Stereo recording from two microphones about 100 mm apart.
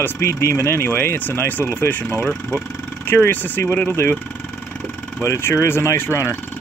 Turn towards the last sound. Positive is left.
turn(degrees=25)  # may be behind; listen again after turning